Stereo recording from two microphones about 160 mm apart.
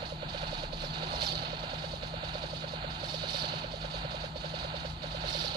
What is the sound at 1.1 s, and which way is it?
Vehicle, 25° right (ahead or behind).